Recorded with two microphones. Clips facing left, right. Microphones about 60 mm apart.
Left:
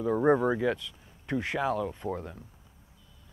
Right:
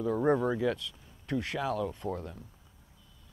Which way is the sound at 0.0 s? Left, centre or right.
Centre.